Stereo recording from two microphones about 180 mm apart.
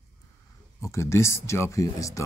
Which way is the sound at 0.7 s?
15° left (ahead or behind).